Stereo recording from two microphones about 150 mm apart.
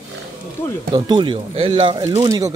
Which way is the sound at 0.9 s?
30° right (ahead or behind).